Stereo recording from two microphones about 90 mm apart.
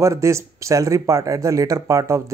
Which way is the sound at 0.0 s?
35° right (ahead or behind).